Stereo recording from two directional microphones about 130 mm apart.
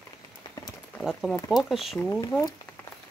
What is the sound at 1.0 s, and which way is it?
Speech, centre (ahead or behind).